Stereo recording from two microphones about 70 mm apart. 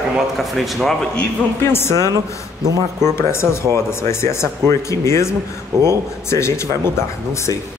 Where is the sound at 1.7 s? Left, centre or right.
Left.